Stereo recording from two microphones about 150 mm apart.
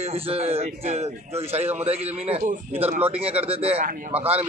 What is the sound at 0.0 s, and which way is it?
A man's voice, 45° right (ahead or behind).